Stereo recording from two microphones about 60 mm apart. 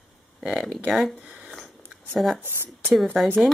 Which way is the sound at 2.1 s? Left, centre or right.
Centre.